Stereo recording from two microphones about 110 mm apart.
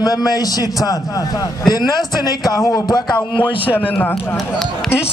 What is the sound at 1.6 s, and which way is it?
A man's voice, 40° left (ahead or behind).